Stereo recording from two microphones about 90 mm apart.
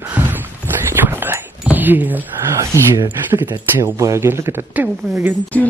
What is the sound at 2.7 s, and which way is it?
Speech, 30° right (ahead or behind).